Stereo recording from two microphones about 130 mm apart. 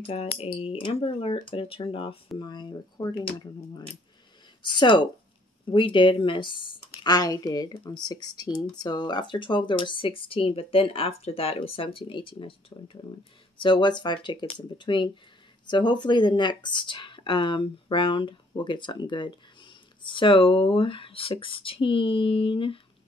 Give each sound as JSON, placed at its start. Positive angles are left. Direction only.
{"t": 0.0, "sound": "speech", "side_deg": 50}
{"t": 4.6, "sound": "speech", "side_deg": 35}